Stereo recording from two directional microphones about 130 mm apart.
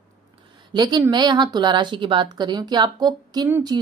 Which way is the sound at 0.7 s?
30° right (ahead or behind).